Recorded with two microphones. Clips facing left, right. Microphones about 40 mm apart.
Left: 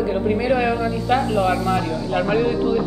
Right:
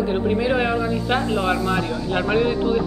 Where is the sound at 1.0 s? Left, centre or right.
Right.